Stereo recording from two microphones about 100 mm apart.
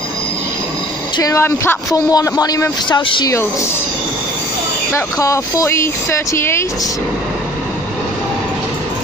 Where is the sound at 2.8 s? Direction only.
55° left (ahead or behind).